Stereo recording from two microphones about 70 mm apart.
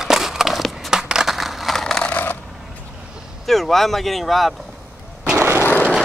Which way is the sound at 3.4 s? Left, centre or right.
Centre.